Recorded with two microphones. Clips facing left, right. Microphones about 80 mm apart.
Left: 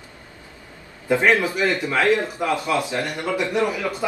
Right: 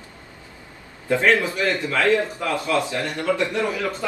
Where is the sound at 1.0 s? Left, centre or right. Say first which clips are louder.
Left 1 dB; centre.